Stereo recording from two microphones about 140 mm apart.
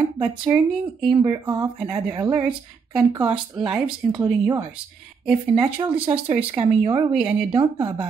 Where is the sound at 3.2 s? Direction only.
35° right (ahead or behind).